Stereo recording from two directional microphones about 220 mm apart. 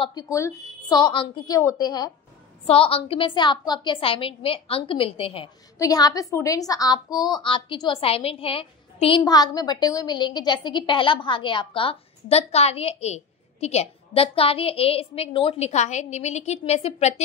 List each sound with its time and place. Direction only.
0.0 s a woman's voice: 20° left (ahead or behind)